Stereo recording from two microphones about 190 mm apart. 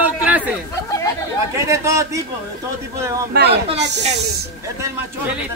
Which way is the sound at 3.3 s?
55° right (ahead or behind).